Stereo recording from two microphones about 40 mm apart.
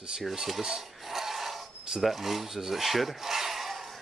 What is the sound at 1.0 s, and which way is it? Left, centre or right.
Filing, centre.